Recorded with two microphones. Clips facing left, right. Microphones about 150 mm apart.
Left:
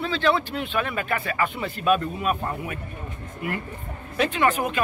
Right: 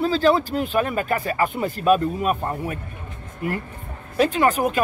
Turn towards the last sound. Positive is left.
turn(degrees=-40)  # may be behind; listen again after turning